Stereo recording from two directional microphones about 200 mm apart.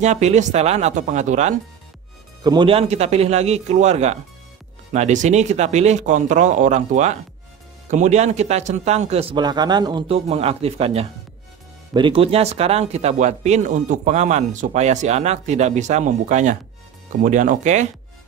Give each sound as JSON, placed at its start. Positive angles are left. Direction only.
{"t": 0.0, "sound": "speech", "side_deg": -35}
{"t": 2.4, "sound": "speech", "side_deg": -25}